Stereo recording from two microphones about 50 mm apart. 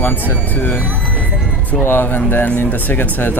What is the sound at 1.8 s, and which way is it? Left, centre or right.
Speech, left.